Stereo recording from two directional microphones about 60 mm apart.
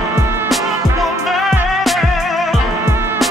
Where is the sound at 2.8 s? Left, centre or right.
Right.